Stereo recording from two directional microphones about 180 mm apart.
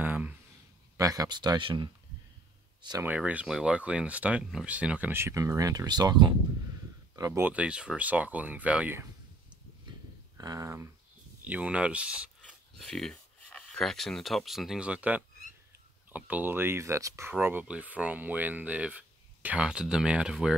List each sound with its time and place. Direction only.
0.0 s a sound: 10° right (ahead or behind)
0.9 s speech: 20° right (ahead or behind)
3.1 s speech: 5° right (ahead or behind)
10.3 s speech: 20° right (ahead or behind)